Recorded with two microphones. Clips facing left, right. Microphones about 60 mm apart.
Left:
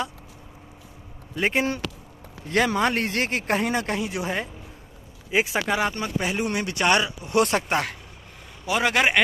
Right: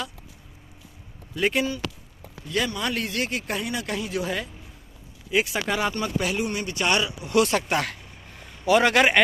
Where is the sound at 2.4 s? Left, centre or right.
Left.